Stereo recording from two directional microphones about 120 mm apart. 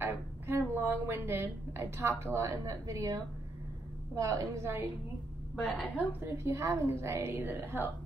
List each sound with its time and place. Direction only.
0.0 s a sound: 20° right (ahead or behind)
2.3 s a woman's voice: 25° right (ahead or behind)
5.9 s a woman's voice: 20° right (ahead or behind)